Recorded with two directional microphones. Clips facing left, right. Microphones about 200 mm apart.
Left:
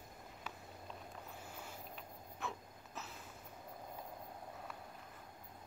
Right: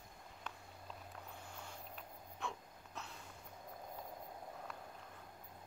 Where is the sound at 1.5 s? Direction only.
5° left (ahead or behind).